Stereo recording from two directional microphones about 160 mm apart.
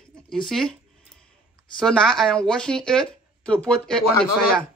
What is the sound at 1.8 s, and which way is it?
Speech, 5° left (ahead or behind).